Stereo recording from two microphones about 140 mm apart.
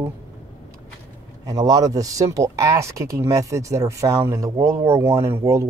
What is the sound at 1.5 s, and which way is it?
Speech, 25° right (ahead or behind).